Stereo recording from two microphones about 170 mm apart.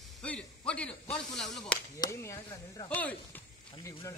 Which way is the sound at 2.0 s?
15° left (ahead or behind).